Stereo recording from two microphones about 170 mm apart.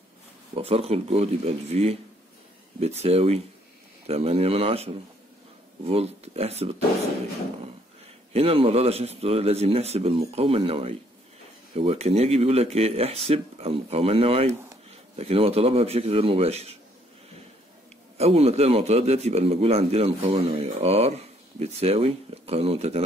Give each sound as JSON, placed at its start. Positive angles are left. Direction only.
{"t": 0.6, "sound": "a man's voice", "side_deg": -35}
{"t": 3.0, "sound": "a man's voice", "side_deg": -35}
{"t": 8.3, "sound": "a man's voice", "side_deg": -35}
{"t": 18.1, "sound": "a man's voice", "side_deg": -35}